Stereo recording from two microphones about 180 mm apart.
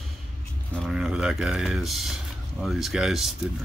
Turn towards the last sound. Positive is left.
turn(degrees=0)  # may be behind; listen again after turning